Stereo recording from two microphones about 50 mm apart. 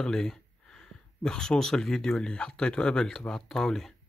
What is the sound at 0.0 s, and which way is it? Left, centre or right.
Speech, centre.